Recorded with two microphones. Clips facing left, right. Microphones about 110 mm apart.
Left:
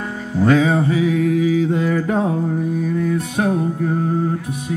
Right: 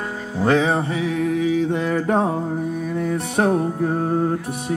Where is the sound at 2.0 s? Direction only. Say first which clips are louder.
Even; 35° right (ahead or behind).